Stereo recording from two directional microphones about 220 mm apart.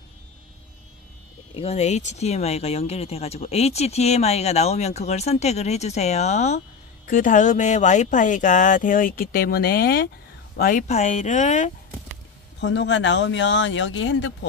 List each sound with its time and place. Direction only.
1.5 s speech: 30° left (ahead or behind)
12.5 s speech: 55° left (ahead or behind)